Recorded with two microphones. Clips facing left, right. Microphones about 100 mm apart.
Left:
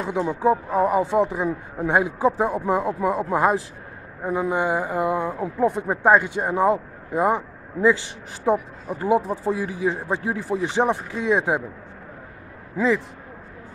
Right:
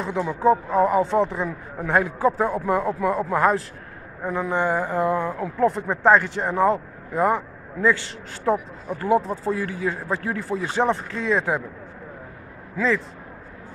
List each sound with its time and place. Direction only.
0.0 s speech: 15° left (ahead or behind)
12.7 s speech: 15° left (ahead or behind)